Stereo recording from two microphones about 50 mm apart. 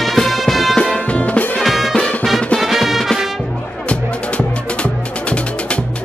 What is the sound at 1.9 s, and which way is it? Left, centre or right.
Music, left.